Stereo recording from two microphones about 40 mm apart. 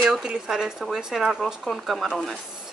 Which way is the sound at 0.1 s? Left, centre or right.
Centre.